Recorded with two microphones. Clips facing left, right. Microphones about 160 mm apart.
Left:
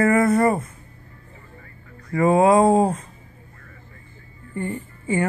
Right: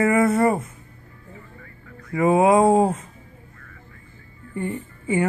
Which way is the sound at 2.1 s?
10° right (ahead or behind).